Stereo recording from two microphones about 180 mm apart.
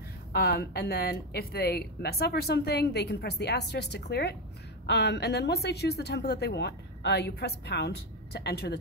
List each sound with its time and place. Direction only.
0.3 s speech: 60° left (ahead or behind)